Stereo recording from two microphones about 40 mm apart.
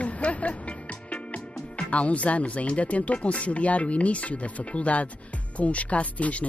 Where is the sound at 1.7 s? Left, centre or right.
Left.